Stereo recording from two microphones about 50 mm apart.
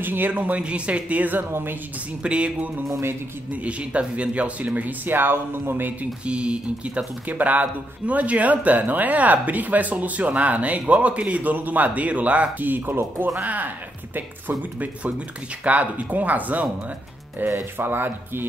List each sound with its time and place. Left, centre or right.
0.0 s speech: right
0.6 s speech: right
1.5 s speech: right
2.2 s speech: right
6.2 s speech: right
7.2 s speech: right